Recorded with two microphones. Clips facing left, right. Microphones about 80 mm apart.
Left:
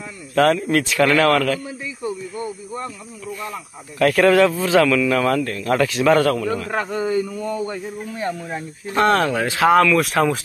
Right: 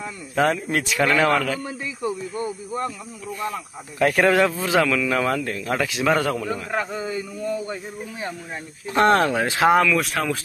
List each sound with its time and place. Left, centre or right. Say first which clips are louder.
0.4 s a man's voice: left 5 dB; centre
4.0 s a man's voice: left 3 dB; centre
6.1 s a man's voice: left 5 dB; centre
8.9 s speech: even; right
9.8 s speech: left 5 dB; centre